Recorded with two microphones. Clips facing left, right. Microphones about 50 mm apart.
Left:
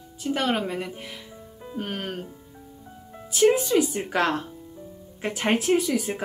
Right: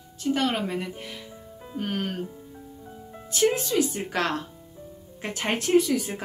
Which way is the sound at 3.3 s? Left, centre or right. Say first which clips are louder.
Left 4 dB; centre.